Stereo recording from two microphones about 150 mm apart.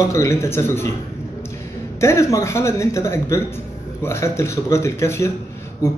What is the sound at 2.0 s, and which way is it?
A man's voice, 20° left (ahead or behind).